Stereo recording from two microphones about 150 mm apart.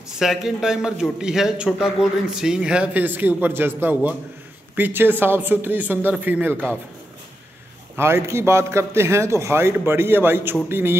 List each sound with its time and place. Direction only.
0.2 s a man's voice: 5° right (ahead or behind)
7.9 s a man's voice: 15° right (ahead or behind)